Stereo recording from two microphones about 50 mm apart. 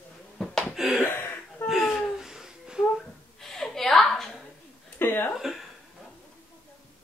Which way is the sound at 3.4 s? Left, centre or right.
Centre.